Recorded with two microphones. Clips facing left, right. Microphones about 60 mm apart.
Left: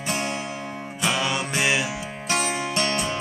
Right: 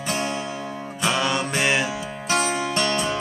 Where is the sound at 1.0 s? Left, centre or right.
Centre.